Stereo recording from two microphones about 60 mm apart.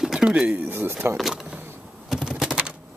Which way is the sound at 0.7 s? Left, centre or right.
Right.